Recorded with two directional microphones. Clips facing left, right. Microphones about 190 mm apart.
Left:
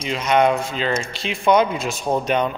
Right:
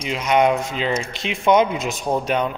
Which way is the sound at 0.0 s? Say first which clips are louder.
Even; 10° right (ahead or behind).